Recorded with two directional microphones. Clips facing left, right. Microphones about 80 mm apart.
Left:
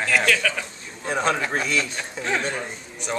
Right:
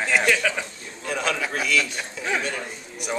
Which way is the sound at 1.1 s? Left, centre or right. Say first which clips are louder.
Left 3 dB; left.